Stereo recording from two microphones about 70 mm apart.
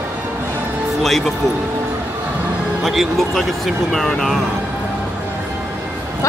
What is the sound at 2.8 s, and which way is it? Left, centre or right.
A man's voice, centre.